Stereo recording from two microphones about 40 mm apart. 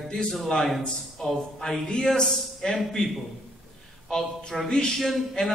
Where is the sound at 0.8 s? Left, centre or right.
Centre.